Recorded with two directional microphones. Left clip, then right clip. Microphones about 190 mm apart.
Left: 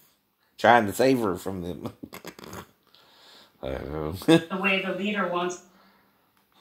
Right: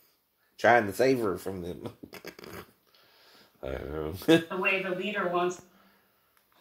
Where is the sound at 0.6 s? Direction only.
40° left (ahead or behind).